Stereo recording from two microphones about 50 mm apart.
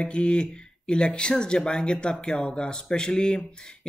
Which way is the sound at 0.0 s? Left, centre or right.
Left.